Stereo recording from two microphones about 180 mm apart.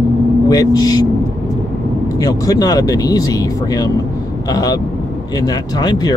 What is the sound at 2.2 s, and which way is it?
Speech, 20° left (ahead or behind).